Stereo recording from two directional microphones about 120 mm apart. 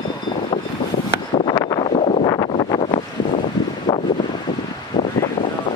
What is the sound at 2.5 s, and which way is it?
Wind noise, 45° left (ahead or behind).